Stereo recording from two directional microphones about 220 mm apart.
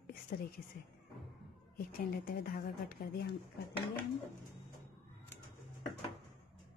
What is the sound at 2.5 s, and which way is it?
Speech, 45° left (ahead or behind).